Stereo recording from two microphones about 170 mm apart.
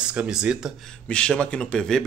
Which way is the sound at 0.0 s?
5° right (ahead or behind).